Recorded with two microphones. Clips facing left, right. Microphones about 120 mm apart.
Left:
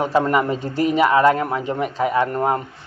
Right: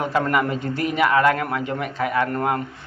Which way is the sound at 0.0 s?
25° left (ahead or behind).